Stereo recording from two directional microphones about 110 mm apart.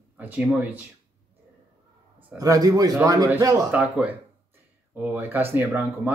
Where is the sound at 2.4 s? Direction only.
35° right (ahead or behind).